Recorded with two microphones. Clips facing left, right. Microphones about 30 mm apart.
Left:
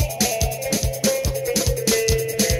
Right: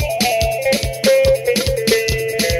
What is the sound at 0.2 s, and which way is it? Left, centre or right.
Music, right.